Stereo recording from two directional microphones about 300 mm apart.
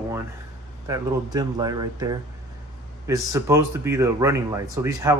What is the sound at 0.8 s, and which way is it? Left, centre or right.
Speech, centre.